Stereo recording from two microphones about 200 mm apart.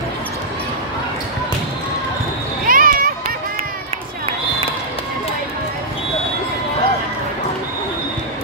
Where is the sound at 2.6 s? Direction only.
45° right (ahead or behind).